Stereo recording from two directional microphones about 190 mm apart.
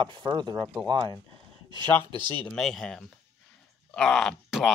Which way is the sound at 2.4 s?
Centre (ahead or behind).